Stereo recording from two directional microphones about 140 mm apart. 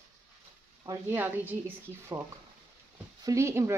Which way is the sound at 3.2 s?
20° right (ahead or behind).